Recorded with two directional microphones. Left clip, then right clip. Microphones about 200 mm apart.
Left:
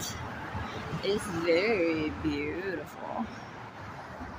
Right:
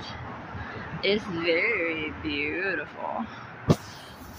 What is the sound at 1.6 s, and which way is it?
Speech, 45° left (ahead or behind).